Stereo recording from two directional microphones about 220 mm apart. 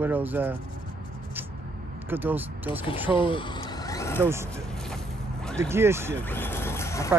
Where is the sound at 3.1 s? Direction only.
25° left (ahead or behind).